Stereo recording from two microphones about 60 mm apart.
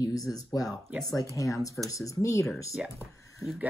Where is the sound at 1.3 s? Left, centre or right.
Left.